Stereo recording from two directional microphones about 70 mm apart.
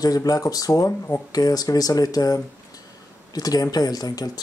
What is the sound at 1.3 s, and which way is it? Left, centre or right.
Speech, left.